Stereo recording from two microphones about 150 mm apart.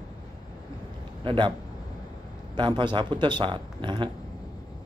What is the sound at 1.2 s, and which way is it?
Speech, 35° right (ahead or behind).